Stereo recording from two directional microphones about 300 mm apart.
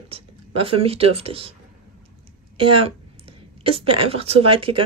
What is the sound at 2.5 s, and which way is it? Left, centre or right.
A woman's voice, centre.